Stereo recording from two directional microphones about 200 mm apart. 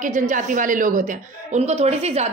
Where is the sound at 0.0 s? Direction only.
40° right (ahead or behind).